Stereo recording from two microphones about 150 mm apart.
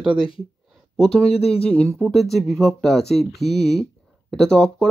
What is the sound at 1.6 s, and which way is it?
Speech, 5° left (ahead or behind).